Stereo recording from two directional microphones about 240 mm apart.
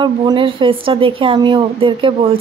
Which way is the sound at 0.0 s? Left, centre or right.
Centre.